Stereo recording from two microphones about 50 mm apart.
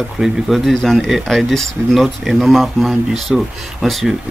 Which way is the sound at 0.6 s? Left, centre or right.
Centre.